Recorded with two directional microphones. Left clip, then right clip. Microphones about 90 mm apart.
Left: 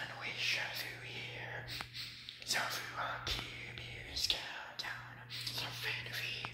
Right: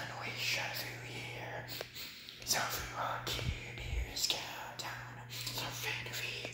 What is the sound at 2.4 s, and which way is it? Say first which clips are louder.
Whispering: right 1 dB; 40° right (ahead or behind).